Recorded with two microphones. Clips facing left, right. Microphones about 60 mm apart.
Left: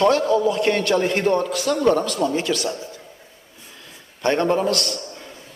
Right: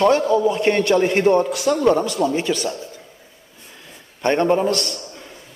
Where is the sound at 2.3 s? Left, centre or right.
Centre.